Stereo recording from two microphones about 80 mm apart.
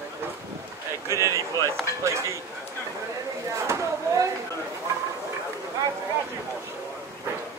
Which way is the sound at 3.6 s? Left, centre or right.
Right.